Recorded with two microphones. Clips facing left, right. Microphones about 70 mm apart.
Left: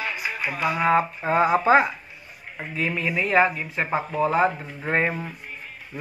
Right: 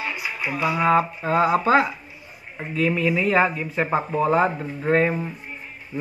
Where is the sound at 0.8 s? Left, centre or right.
Centre.